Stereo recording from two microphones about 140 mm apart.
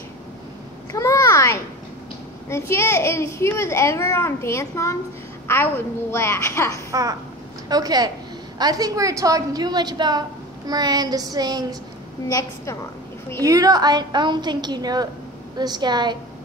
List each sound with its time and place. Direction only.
0.9 s a sound: 20° left (ahead or behind)
2.5 s a child's voice: 20° left (ahead or behind)
6.9 s a woman's voice: 25° right (ahead or behind)
12.3 s a child's voice: 25° left (ahead or behind)
13.4 s a woman's voice: 25° right (ahead or behind)